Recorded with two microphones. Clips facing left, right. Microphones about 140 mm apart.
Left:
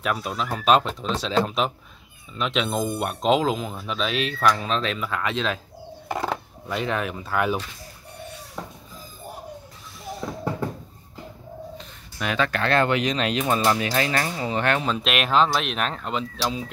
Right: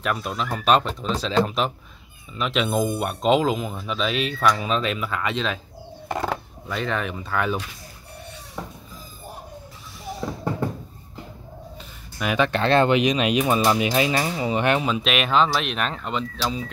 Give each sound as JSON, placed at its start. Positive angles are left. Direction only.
{"t": 0.0, "sound": "speech", "side_deg": 0}
{"t": 10.1, "sound": "a sound", "side_deg": 0}
{"t": 12.4, "sound": "speech", "side_deg": -25}
{"t": 15.0, "sound": "speech", "side_deg": 0}